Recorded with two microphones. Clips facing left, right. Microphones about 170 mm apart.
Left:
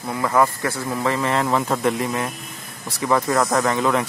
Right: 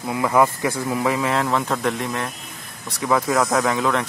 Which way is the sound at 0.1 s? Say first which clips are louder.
Right 1 dB; 10° right (ahead or behind).